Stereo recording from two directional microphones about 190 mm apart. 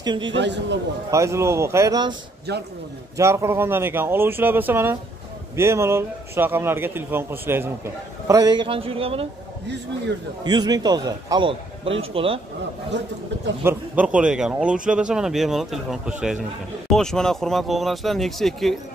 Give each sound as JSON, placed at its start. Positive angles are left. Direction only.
{"t": 0.0, "sound": "a man's voice", "side_deg": -25}
{"t": 0.3, "sound": "a man's voice", "side_deg": -70}
{"t": 1.1, "sound": "speech", "side_deg": -15}
{"t": 3.2, "sound": "speech", "side_deg": -15}
{"t": 10.4, "sound": "a man's voice", "side_deg": -20}
{"t": 13.7, "sound": "speech", "side_deg": -5}